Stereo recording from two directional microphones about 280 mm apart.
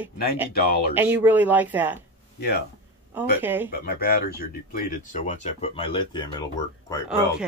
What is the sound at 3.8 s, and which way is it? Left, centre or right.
Speech, left.